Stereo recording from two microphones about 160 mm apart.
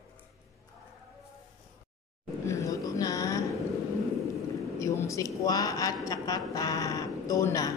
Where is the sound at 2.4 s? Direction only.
20° left (ahead or behind).